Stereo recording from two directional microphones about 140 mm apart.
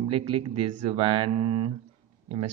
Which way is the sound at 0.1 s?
40° right (ahead or behind).